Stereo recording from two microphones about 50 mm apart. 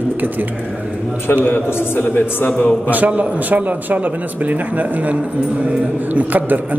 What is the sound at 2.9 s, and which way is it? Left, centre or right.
A man's voice, right.